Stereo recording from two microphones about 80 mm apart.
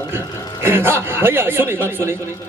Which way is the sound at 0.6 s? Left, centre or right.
Right.